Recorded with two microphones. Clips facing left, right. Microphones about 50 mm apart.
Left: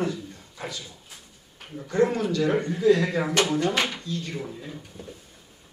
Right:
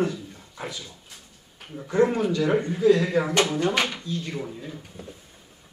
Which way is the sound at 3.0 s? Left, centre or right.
Centre.